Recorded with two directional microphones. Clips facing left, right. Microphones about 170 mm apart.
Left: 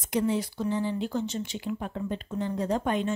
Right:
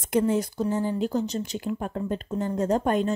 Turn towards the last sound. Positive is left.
turn(degrees=-45)  # may be behind; listen again after turning